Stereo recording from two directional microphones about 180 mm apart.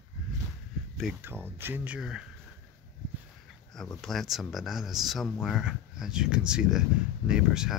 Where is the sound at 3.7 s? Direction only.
Centre (ahead or behind).